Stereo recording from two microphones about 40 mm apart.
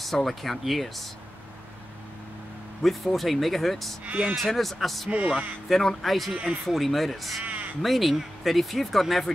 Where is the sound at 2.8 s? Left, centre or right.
Centre.